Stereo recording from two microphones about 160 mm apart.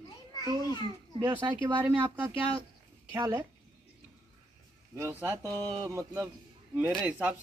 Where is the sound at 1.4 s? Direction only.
25° right (ahead or behind).